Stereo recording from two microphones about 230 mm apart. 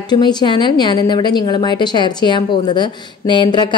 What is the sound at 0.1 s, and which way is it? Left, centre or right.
A woman's voice, centre.